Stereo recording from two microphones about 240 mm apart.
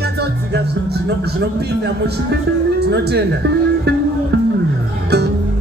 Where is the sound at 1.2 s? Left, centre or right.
Right.